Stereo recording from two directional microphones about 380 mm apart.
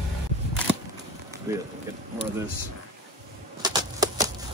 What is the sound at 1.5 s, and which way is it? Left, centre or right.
Speech, centre.